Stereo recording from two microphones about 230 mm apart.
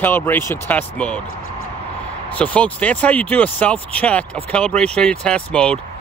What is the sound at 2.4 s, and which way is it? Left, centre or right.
Speech, centre.